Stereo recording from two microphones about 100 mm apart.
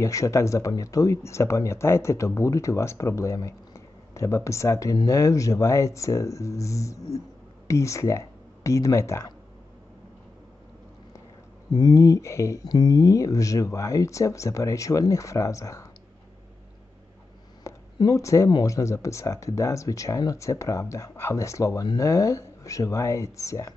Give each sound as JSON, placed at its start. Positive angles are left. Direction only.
{"t": 0.0, "sound": "speech", "side_deg": 30}
{"t": 11.7, "sound": "speech", "side_deg": 40}
{"t": 12.6, "sound": "speech", "side_deg": 40}
{"t": 17.9, "sound": "speech", "side_deg": 35}